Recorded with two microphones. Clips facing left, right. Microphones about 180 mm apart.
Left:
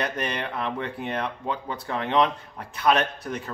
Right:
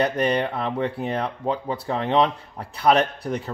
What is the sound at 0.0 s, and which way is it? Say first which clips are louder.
A man's voice: right 7 dB; 35° right (ahead or behind).